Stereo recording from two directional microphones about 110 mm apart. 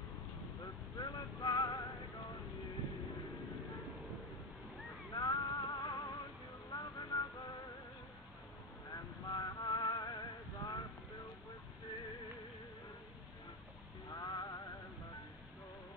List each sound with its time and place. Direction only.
0.9 s music: 40° left (ahead or behind)
5.1 s music: 40° left (ahead or behind)
6.7 s vehicle: 40° left (ahead or behind)
8.9 s vehicle: 40° left (ahead or behind)
14.1 s music: 40° left (ahead or behind)